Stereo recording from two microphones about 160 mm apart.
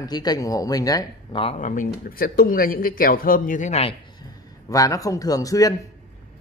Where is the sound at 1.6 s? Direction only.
55° left (ahead or behind).